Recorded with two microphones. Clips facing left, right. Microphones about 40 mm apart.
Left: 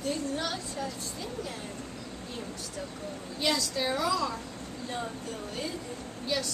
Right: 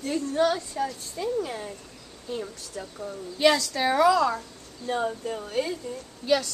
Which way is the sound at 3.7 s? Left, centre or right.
Right.